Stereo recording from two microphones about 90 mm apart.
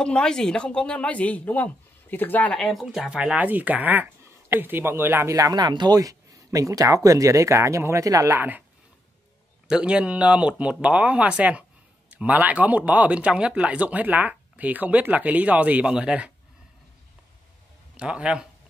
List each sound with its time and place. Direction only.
0.0 s speech: 10° left (ahead or behind)
2.5 s speech: centre (ahead or behind); by 5.3 s 25° right (ahead or behind)
5.3 s speech: 45° right (ahead or behind); by 8.6 s 20° right (ahead or behind)
9.7 s speech: 10° right (ahead or behind)
17.9 s speech: 10° right (ahead or behind)